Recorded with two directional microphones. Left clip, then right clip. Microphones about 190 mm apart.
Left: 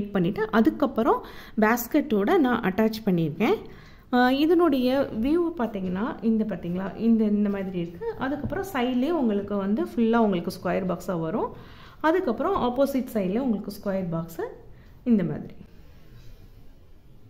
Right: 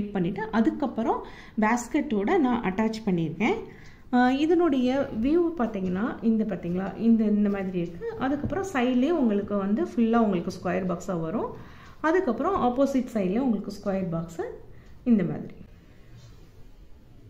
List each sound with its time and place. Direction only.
0.1 s a woman's voice: 55° left (ahead or behind); by 15.5 s 35° left (ahead or behind)